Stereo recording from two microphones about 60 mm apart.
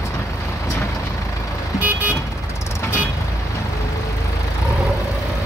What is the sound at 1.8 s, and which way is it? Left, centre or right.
Vehicle, right.